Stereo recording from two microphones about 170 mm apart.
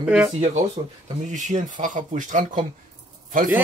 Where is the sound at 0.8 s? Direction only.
30° right (ahead or behind).